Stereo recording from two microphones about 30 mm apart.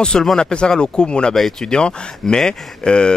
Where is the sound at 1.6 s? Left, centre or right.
Left.